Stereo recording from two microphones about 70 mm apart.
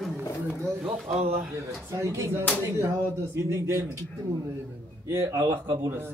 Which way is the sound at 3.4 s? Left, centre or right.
Right.